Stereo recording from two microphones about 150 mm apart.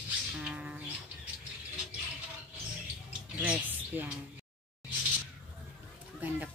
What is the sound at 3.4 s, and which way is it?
Speech, 10° right (ahead or behind).